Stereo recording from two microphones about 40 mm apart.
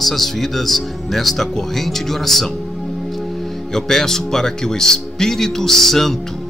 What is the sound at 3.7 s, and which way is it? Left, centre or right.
Speech, centre.